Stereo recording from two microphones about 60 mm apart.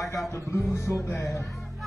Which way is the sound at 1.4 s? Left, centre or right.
Centre.